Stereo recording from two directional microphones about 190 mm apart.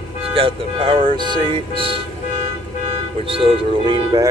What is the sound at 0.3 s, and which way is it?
Speech, 30° right (ahead or behind).